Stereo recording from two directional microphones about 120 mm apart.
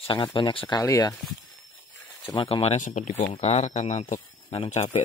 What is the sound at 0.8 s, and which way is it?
Speech, 30° left (ahead or behind).